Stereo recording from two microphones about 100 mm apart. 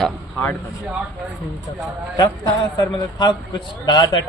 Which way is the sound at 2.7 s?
50° left (ahead or behind).